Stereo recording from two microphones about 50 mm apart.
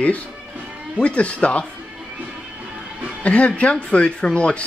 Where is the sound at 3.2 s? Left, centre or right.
Left.